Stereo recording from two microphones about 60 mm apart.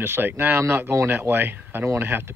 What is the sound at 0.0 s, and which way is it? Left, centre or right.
Speech, right.